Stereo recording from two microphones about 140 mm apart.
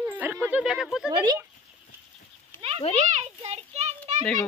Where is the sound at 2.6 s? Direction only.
45° right (ahead or behind).